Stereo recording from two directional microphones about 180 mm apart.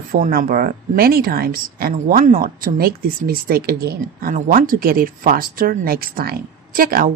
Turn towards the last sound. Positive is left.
turn(degrees=-50)  # may be behind; listen again after turning